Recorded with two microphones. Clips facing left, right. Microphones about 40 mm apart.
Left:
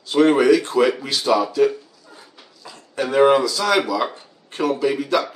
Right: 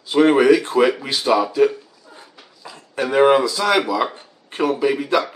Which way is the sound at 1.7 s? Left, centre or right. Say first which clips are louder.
Left 2 dB; centre.